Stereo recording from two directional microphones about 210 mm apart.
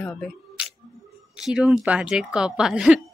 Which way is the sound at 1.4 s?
5° right (ahead or behind).